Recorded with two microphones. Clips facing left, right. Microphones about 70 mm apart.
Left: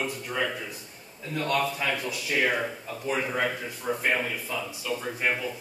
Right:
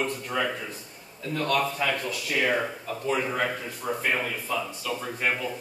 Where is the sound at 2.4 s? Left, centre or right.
Centre.